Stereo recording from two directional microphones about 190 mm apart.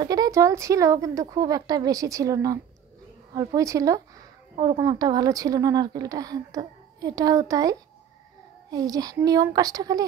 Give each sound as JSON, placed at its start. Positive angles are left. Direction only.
{"t": 0.0, "sound": "a woman's voice", "side_deg": -20}